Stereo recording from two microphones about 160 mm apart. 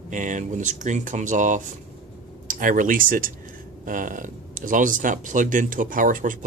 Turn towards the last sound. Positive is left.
turn(degrees=-55)  # may be behind; listen again after turning